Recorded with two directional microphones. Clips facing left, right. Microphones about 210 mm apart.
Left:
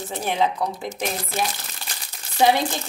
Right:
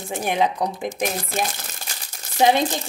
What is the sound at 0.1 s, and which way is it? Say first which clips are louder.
Speech: right 2 dB; 15° right (ahead or behind).